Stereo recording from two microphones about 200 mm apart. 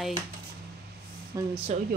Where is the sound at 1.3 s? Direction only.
15° right (ahead or behind).